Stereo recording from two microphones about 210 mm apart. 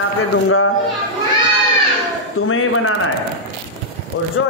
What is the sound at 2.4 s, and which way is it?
Speech, 80° left.